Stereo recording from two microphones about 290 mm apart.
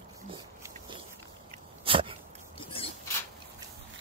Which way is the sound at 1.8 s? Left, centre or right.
Centre.